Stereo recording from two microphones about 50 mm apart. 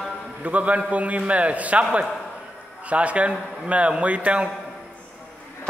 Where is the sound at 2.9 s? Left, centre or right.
Right.